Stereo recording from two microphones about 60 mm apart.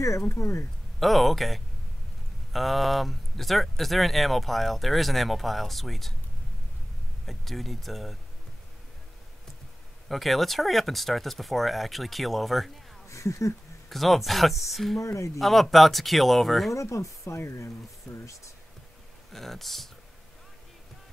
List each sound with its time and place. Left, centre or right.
0.3 s speech: left
0.9 s speech: centre
7.2 s speech: centre
10.0 s speech: centre
13.1 s speech: left
13.8 s speech: centre
15.0 s speech: left
15.3 s speech: centre
16.7 s speech: left
17.4 s speech: left
19.3 s speech: centre